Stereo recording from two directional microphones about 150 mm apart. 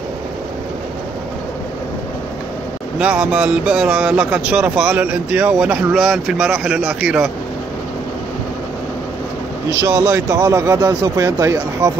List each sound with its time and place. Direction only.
3.0 s speech: 5° right (ahead or behind)
9.7 s speech: 20° right (ahead or behind)